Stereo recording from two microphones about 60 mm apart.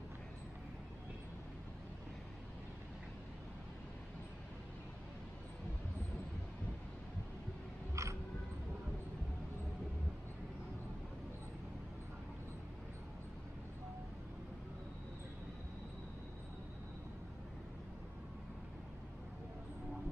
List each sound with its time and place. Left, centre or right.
7.9 s music: right